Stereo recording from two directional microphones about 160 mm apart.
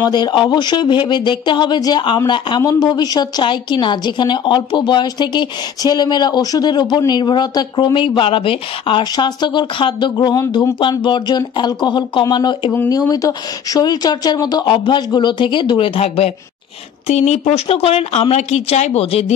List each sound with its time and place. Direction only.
0.0 s speech: 30° left (ahead or behind)
12.7 s speech: 15° left (ahead or behind); by 19.3 s 40° left (ahead or behind)